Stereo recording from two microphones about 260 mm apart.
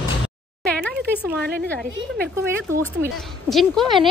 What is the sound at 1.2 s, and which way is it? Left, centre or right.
Speech, centre.